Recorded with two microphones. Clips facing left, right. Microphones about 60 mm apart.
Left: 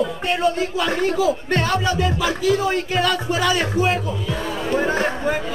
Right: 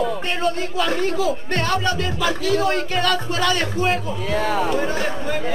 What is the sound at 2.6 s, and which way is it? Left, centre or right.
Music, centre.